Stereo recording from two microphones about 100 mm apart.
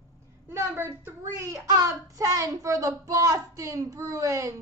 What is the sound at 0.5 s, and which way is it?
Speech, 25° right (ahead or behind).